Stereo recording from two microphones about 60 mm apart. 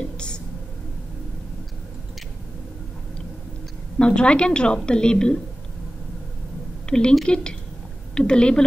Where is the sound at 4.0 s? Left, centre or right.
Centre.